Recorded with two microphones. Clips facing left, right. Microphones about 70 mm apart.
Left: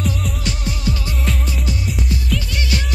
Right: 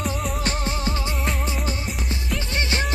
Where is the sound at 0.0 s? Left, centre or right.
Right.